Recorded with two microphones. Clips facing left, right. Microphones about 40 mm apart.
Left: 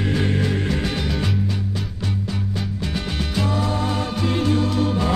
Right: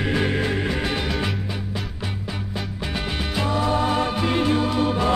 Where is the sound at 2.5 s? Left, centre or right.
Centre.